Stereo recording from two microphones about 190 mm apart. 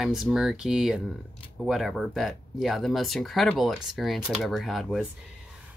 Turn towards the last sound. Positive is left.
turn(degrees=0)  # may be behind; listen again after turning